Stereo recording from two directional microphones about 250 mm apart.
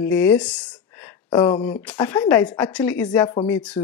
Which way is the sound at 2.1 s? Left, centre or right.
Centre.